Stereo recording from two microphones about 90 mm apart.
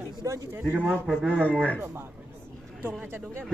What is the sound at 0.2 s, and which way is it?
Speech, 30° right (ahead or behind).